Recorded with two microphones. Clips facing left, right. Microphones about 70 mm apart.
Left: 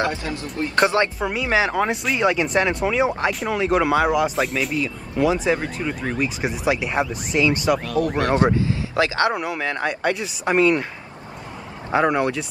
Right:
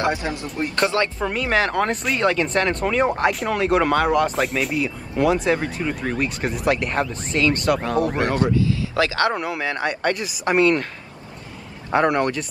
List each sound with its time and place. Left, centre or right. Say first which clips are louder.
0.0 s speech: right 1 dB; right
0.7 s speech: left 3 dB; left
1.2 s speech: even; centre
7.8 s speech: right 1 dB; right
8.5 s speech: right 1 dB; left
9.3 s speech: even; centre
11.9 s speech: even; centre